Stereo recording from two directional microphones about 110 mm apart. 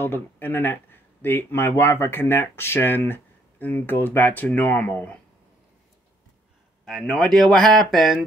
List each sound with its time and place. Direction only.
0.0 s speech: 20° left (ahead or behind)
6.8 s speech: centre (ahead or behind)